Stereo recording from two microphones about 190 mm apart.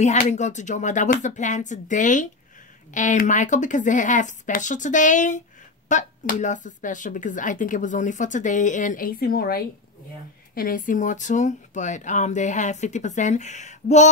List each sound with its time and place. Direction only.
0.0 s speech: 40° left (ahead or behind)